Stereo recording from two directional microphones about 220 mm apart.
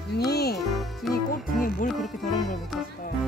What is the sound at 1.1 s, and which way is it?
Music, 40° left (ahead or behind).